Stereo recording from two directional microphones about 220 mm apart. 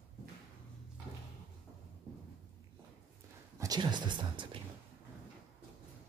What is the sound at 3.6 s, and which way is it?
Speech, 20° right (ahead or behind).